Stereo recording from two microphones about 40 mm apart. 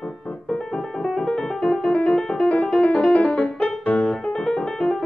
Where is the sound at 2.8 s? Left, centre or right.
Left.